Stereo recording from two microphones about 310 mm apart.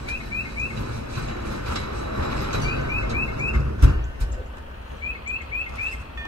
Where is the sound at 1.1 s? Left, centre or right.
Right.